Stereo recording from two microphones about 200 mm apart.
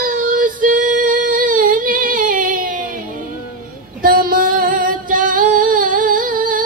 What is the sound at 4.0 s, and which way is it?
Female singing, 45° right (ahead or behind).